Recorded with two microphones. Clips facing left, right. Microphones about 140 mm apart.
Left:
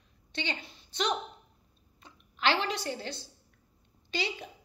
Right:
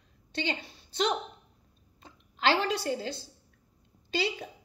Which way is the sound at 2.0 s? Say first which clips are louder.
Right 1 dB; 35° right (ahead or behind).